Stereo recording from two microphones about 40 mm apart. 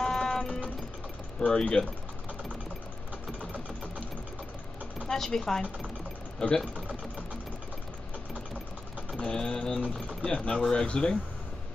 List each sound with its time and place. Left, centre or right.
0.0 s music: centre
1.4 s speech: left
5.0 s speech: centre
6.4 s speech: left
9.1 s pigeon: centre
10.2 s speech: left